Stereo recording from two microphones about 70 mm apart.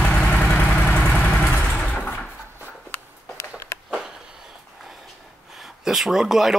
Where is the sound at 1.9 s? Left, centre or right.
Centre.